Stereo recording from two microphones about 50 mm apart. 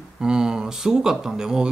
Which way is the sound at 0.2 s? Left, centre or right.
Centre.